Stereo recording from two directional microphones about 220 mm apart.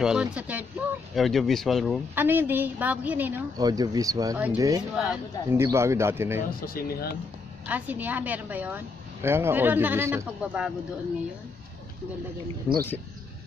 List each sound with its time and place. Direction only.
0.0 s speech: 5° right (ahead or behind)
2.1 s a woman's voice: 10° right (ahead or behind)
4.9 s a woman's voice: 5° right (ahead or behind)
6.6 s speech: 40° left (ahead or behind)
7.6 s a woman's voice: 5° right (ahead or behind)